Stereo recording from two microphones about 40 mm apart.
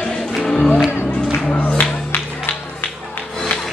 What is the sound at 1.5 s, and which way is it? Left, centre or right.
Music, left.